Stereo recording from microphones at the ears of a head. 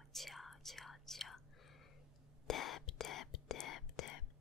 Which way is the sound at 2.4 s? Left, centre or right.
Left.